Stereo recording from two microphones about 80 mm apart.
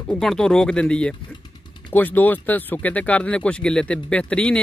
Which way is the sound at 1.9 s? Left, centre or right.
Left.